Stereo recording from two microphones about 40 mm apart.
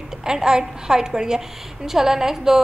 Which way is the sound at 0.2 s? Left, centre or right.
Centre.